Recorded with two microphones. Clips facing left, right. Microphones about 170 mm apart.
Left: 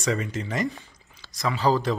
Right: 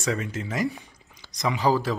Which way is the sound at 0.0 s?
Centre (ahead or behind).